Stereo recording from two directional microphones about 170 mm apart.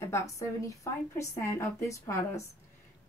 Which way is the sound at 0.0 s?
15° left (ahead or behind).